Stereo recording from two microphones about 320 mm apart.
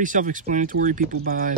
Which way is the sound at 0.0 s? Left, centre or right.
Right.